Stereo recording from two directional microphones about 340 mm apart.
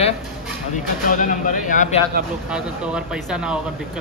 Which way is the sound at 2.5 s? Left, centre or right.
Centre.